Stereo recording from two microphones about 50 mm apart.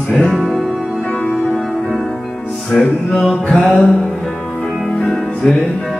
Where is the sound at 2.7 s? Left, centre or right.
Centre.